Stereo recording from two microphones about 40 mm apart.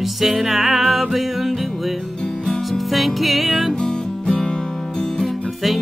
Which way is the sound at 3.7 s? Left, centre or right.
Centre.